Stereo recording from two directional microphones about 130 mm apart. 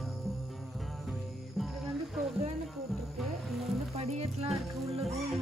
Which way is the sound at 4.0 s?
55° right (ahead or behind).